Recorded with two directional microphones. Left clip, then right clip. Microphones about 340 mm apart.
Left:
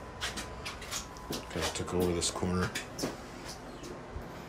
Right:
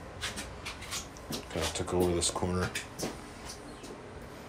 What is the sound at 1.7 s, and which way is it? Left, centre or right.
Speech, centre.